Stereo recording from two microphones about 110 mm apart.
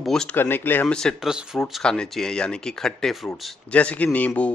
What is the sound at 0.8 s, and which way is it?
A man's voice, 5° left (ahead or behind).